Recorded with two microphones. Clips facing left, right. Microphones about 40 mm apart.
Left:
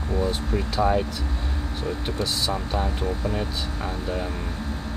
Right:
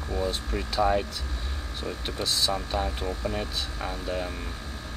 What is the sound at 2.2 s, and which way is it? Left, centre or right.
Speech, centre.